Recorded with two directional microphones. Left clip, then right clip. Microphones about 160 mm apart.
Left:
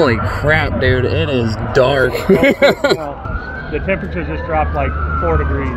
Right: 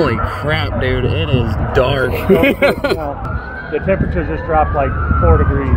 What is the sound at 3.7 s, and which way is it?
Speech, 35° right (ahead or behind).